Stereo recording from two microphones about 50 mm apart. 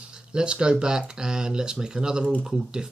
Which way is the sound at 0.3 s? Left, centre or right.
Centre.